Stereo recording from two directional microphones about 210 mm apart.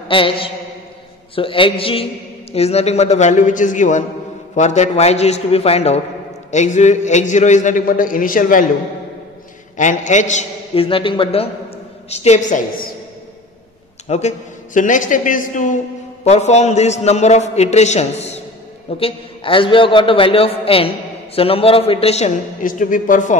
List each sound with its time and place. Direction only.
0.1 s a man's voice: 25° left (ahead or behind); by 8.6 s 40° left (ahead or behind)
9.8 s a man's voice: 35° left (ahead or behind)
14.0 s a man's voice: 35° left (ahead or behind)